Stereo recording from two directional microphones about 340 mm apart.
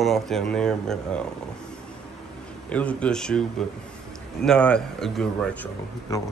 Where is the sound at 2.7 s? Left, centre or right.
Centre.